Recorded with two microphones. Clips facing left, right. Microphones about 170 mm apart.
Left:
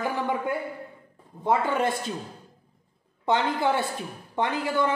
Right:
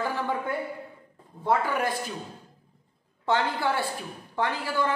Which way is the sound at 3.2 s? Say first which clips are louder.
Left 2 dB; 20° left (ahead or behind).